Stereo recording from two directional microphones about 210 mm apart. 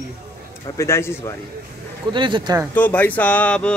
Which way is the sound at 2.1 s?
20° right (ahead or behind).